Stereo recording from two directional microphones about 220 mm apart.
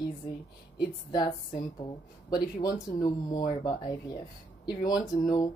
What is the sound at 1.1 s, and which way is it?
A woman's voice, 20° left (ahead or behind).